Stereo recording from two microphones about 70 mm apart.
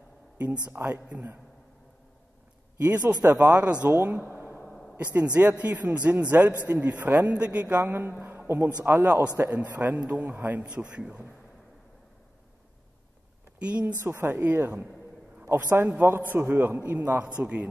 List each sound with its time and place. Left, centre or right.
0.4 s a man's voice: right
1.0 s a man's voice: right
2.8 s a man's voice: right
4.6 s a sound: centre
4.9 s a man's voice: right
7.8 s a man's voice: right
13.6 s speech: centre
14.0 s a man's voice: right; by 17.6 s centre